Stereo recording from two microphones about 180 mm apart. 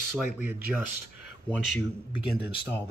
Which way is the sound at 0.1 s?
10° right (ahead or behind).